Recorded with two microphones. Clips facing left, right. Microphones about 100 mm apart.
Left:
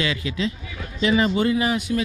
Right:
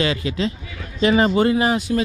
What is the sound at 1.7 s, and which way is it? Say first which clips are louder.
Speech: right 3 dB; 30° right (ahead or behind).